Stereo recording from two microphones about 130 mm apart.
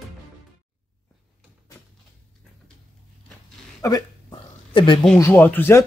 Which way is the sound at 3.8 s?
35° left (ahead or behind).